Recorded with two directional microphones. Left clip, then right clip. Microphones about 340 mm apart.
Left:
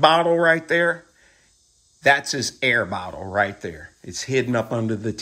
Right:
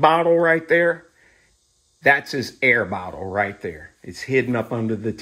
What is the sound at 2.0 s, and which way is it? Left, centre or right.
Speech, centre.